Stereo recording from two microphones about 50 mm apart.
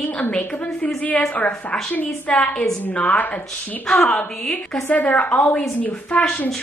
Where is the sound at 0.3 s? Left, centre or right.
Left.